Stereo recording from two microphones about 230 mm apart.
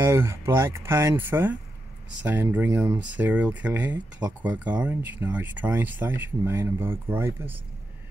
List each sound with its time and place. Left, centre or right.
0.0 s speech: centre